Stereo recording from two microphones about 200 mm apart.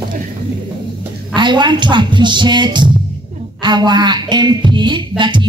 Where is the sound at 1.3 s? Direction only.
25° right (ahead or behind).